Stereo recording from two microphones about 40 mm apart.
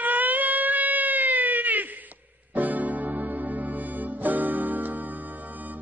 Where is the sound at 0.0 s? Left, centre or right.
Right.